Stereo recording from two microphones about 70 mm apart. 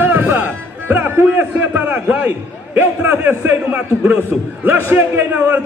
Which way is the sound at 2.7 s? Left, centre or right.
Right.